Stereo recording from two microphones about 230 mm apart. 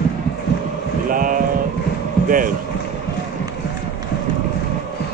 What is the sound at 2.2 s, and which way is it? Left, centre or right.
Speech, right.